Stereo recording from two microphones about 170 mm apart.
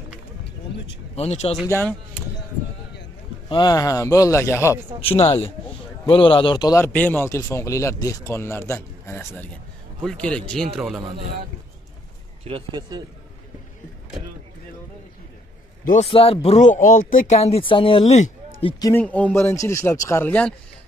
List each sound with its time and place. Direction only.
1.1 s speech: 40° left (ahead or behind)
1.7 s a man's voice: 15° left (ahead or behind)
3.4 s a man's voice: 25° left (ahead or behind)
5.2 s speech: 35° left (ahead or behind); by 6.9 s 20° left (ahead or behind)
6.9 s a man's voice: 10° left (ahead or behind)
12.4 s speech: 30° right (ahead or behind)
15.8 s a man's voice: 50° left (ahead or behind)
16.1 s speech: 35° left (ahead or behind)
16.4 s speech: 45° left (ahead or behind)
18.9 s a man's voice: 10° left (ahead or behind)